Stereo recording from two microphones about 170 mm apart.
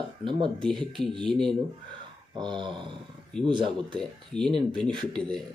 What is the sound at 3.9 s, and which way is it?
Speech, 5° left (ahead or behind).